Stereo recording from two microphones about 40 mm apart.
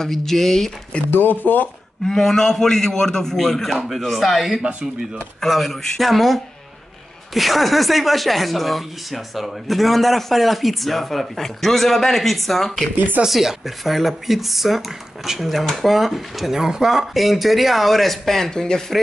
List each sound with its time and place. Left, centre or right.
0.0 s a man's voice: centre
1.1 s speech: left
2.0 s a man's voice: centre
3.7 s speech: centre
13.3 s speech: centre